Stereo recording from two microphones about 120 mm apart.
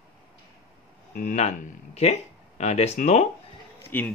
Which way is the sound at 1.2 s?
80° left.